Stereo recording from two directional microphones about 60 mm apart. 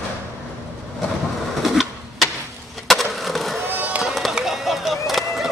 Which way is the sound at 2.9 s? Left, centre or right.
Centre.